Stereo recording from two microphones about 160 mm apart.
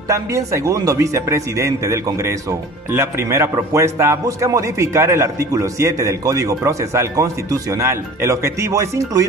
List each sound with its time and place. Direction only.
0.1 s a man's voice: 20° right (ahead or behind)